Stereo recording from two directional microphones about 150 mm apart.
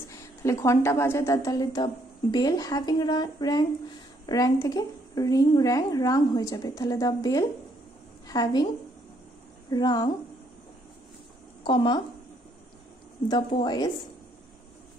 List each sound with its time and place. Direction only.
0.1 s a woman's voice: 20° left (ahead or behind)
9.7 s a woman's voice: 25° left (ahead or behind)
11.6 s speech: 30° left (ahead or behind)
13.3 s a woman's voice: 30° left (ahead or behind)